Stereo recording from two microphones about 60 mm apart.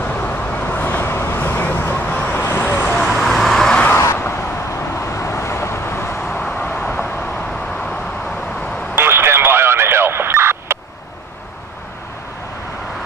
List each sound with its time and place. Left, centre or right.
0.0 s vehicle: left
3.0 s vehicle: centre
3.9 s vehicle: left
6.3 s vehicle: centre
6.6 s vehicle: left
8.9 s a sound: right